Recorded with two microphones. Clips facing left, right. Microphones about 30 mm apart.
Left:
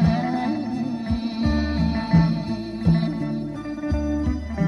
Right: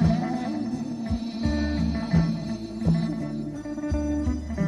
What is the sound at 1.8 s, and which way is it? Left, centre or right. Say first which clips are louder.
Music: left 4 dB; left.